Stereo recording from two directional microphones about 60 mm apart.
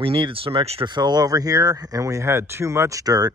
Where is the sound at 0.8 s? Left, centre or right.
Right.